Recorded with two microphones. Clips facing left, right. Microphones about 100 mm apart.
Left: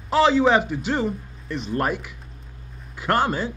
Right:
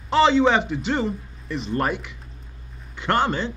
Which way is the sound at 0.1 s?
5° left (ahead or behind).